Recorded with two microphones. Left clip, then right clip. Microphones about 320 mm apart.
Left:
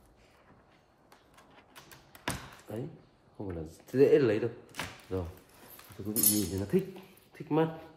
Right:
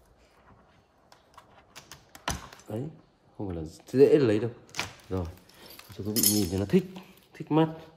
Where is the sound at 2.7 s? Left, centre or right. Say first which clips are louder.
Right 4 dB; right.